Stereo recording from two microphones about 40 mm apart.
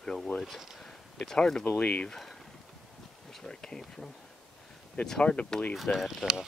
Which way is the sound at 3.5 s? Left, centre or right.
Centre.